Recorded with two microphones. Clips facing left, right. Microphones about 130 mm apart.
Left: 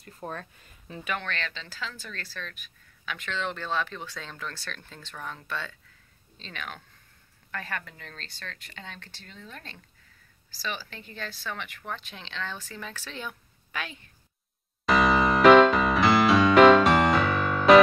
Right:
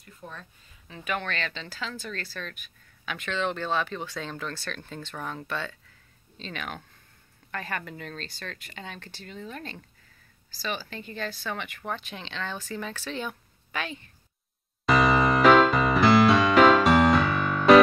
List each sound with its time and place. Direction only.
0.2 s speech: 55° left (ahead or behind)
1.0 s speech: 5° right (ahead or behind)
5.5 s a woman's voice: centre (ahead or behind)
14.9 s music: centre (ahead or behind)